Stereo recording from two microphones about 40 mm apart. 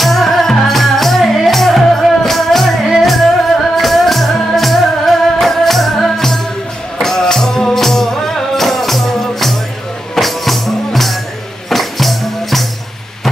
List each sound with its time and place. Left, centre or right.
0.0 s music: centre